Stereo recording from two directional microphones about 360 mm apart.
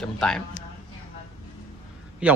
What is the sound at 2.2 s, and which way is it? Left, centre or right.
Speech, centre.